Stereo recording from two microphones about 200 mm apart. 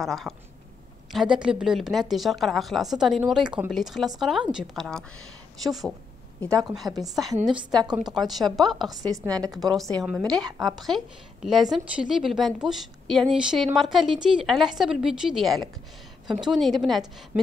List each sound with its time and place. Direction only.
0.0 s a woman's voice: centre (ahead or behind)
7.0 s a woman's voice: centre (ahead or behind)
7.5 s a woman's voice: 20° right (ahead or behind)
8.0 s a woman's voice: centre (ahead or behind)
9.0 s a woman's voice: 15° right (ahead or behind)
9.3 s a woman's voice: centre (ahead or behind)